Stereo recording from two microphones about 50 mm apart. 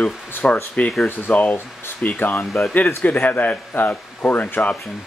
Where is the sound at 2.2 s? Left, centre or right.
Left.